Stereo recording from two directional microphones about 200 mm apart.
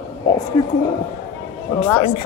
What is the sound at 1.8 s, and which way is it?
Speech, 30° left (ahead or behind).